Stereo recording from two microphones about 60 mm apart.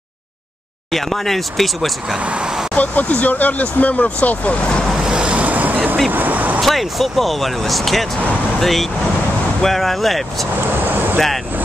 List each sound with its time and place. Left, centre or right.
0.9 s speech: centre
2.1 s vehicle: centre
2.7 s speech: left
4.9 s waves: centre
6.0 s vehicle: right
6.6 s speech: centre
10.9 s vehicle: right
11.1 s speech: centre